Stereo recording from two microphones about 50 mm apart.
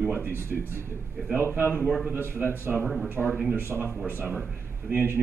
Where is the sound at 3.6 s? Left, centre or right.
Right.